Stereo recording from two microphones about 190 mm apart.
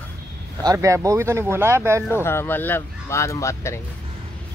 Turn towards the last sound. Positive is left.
turn(degrees=15)  # may be behind; listen again after turning